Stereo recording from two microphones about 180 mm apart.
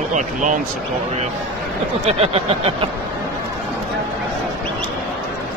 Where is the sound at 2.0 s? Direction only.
35° right (ahead or behind).